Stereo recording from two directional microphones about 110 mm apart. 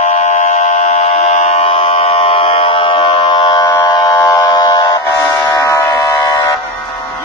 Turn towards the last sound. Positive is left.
turn(degrees=40)  # may be behind; listen again after turning